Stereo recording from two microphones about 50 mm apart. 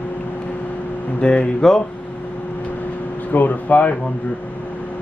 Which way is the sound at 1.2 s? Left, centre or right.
Left.